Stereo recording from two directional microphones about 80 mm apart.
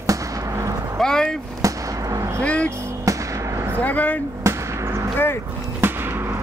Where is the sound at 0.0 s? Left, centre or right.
Right.